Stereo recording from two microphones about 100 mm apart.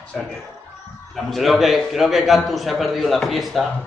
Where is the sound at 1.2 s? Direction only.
Centre (ahead or behind).